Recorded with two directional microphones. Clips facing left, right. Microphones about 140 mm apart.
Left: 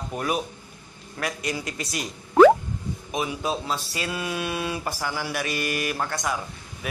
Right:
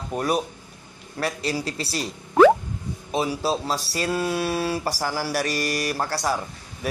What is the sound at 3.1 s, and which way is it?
Speech, 35° right (ahead or behind).